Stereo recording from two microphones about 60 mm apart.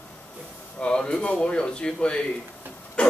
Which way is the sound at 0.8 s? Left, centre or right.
Centre.